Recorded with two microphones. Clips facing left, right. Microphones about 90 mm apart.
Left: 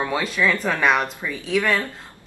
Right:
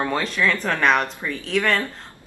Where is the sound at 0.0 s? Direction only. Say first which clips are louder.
Even; 5° left (ahead or behind).